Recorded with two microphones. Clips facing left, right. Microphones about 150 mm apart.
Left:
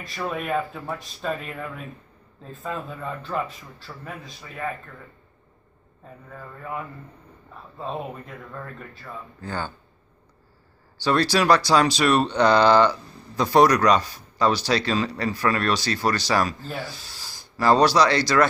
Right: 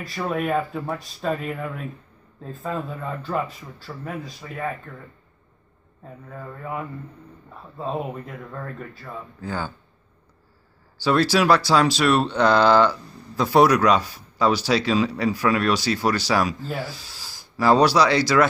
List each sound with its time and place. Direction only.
0.0 s speech: centre (ahead or behind)
6.3 s speech: 5° right (ahead or behind)
11.0 s speech: 5° right (ahead or behind)